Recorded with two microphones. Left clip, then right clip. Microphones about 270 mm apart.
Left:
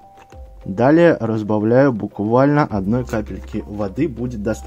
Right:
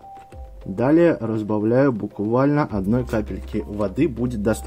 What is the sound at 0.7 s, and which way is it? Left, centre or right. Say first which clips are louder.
Speech: left 4 dB; centre.